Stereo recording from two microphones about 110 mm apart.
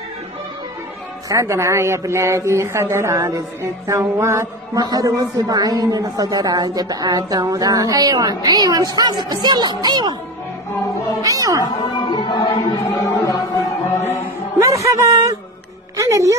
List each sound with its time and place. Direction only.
1.3 s a man's voice: 25° right (ahead or behind)
11.2 s a sound: 30° right (ahead or behind)
11.6 s speech: 40° left (ahead or behind)
12.8 s music: 30° left (ahead or behind)
14.9 s a sound: 30° right (ahead or behind)
16.0 s music: 30° right (ahead or behind)